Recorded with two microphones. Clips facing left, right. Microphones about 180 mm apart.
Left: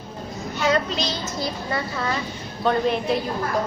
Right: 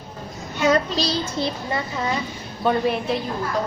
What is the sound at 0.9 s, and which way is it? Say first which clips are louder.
Speech: right 3 dB; 35° right (ahead or behind).